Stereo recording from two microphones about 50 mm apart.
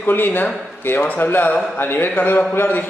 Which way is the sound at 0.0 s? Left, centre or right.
Left.